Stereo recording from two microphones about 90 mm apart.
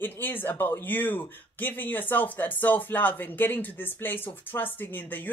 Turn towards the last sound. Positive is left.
turn(degrees=20)  # may be behind; listen again after turning